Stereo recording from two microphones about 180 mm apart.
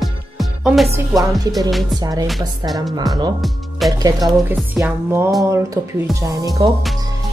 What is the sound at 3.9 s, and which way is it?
Speech, 20° right (ahead or behind).